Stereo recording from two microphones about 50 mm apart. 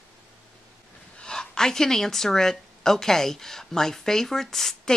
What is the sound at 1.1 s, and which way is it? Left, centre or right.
A woman's voice, centre.